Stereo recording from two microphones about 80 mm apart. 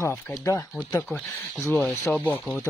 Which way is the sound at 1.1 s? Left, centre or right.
Left.